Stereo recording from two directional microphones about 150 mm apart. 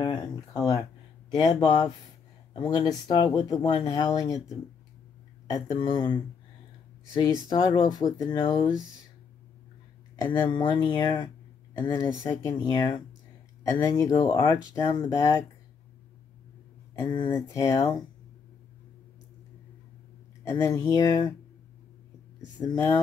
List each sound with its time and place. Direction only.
0.0 s speech: 25° left (ahead or behind)
5.8 s speech: 35° left (ahead or behind)
7.2 s speech: 30° left (ahead or behind)
10.4 s speech: 35° left (ahead or behind)
17.0 s speech: 30° left (ahead or behind)
17.3 s speech: 20° left (ahead or behind)
20.4 s speech: 20° left (ahead or behind)
22.6 s speech: 25° left (ahead or behind)